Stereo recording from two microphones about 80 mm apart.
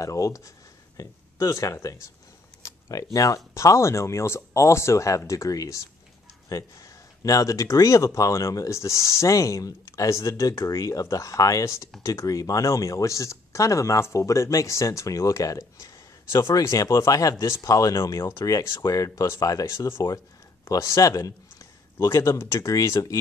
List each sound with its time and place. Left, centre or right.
0.0 s a man's voice: left